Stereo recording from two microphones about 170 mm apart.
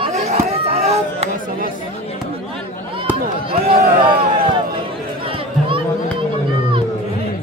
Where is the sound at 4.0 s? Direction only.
30° right (ahead or behind).